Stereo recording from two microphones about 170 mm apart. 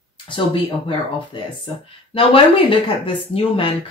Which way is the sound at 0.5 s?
30° left (ahead or behind).